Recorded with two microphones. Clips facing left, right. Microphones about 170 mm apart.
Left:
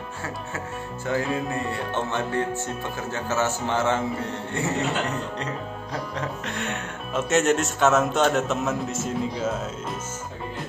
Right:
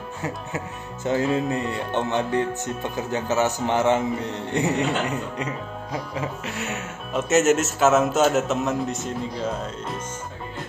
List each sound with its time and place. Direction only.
1.0 s music: 20° right (ahead or behind)
6.1 s speech: 5° right (ahead or behind)